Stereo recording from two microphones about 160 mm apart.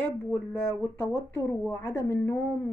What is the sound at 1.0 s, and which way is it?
Speech, 15° left (ahead or behind).